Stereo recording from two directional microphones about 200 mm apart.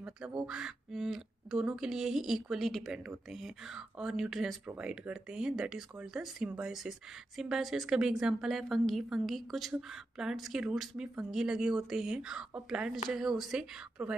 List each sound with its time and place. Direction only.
0.5 s speech: 5° right (ahead or behind)